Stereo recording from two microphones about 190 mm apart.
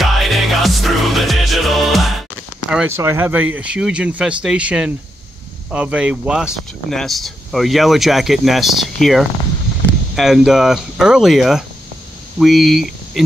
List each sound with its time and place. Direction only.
0.0 s music: centre (ahead or behind)
2.7 s speech: 10° right (ahead or behind)